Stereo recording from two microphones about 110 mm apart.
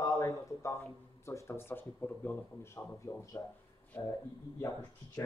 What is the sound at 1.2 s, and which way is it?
Speech, 25° left (ahead or behind).